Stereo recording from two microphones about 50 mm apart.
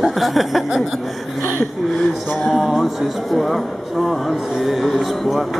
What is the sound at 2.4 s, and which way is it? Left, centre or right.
Speech, centre.